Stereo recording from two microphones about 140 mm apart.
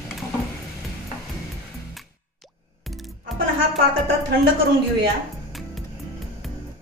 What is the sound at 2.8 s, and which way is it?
Music, centre (ahead or behind).